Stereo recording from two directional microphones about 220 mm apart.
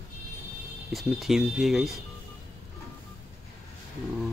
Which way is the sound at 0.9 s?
Centre (ahead or behind).